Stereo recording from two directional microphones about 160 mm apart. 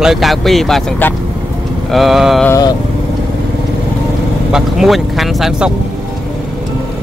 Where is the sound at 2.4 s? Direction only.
20° left (ahead or behind).